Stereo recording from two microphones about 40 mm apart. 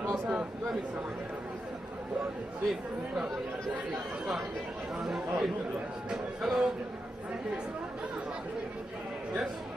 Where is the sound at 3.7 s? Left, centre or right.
Right.